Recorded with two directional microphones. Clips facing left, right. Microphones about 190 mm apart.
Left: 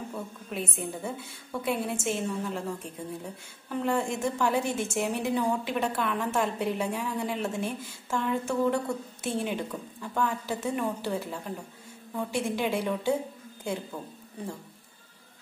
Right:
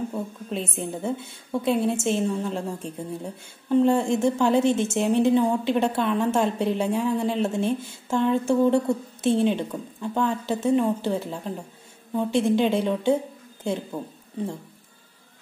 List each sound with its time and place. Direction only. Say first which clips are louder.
0.1 s a woman's voice: right 6 dB; 25° right (ahead or behind)